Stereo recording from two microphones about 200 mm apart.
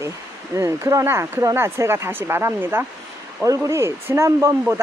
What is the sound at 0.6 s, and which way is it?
Speech, 15° right (ahead or behind).